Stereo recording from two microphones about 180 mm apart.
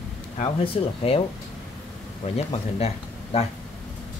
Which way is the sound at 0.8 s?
35° left (ahead or behind).